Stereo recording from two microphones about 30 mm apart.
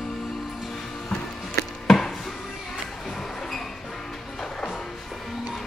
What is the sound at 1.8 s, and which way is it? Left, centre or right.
Chop, centre.